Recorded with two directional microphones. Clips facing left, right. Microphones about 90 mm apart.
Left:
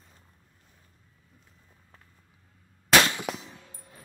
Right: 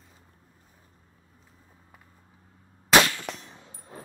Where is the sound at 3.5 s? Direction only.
25° right (ahead or behind).